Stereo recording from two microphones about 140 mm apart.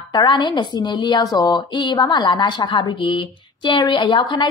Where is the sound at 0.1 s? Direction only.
30° left (ahead or behind).